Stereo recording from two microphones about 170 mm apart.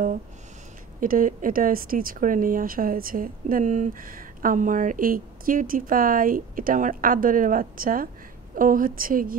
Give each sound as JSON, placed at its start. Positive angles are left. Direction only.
{"t": 1.0, "sound": "speech", "side_deg": -55}